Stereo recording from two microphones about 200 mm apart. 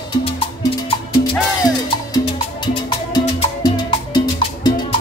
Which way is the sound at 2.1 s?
25° left (ahead or behind).